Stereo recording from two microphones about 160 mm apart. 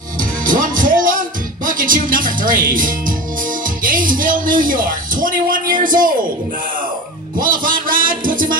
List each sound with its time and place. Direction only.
0.2 s music: 60° right (ahead or behind)
7.3 s music: 60° right (ahead or behind)